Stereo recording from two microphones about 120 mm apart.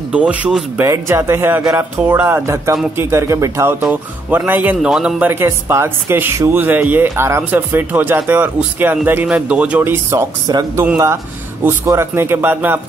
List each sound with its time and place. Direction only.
0.1 s speech: 10° right (ahead or behind)
0.7 s speech: 25° right (ahead or behind)
3.8 s speech: 15° right (ahead or behind)
5.3 s speech: 20° right (ahead or behind)